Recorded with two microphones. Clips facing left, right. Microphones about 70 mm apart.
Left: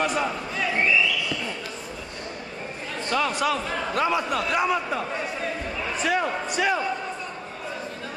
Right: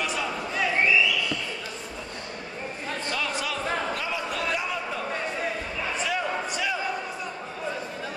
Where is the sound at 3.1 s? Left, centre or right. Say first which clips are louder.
Left 9 dB; left.